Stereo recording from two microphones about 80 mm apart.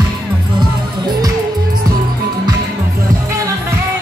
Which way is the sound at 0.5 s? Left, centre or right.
Right.